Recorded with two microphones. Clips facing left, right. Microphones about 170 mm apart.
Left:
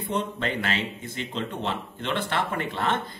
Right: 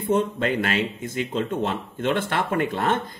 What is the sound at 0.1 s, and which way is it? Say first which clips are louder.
Speech: right 7 dB; 45° right (ahead or behind).